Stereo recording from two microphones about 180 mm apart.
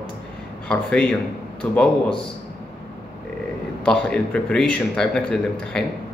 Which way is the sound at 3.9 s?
5° left (ahead or behind).